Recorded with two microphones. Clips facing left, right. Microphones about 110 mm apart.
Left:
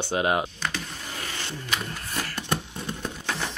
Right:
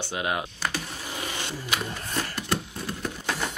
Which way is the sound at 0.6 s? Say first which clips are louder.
Right 1 dB; 10° right (ahead or behind).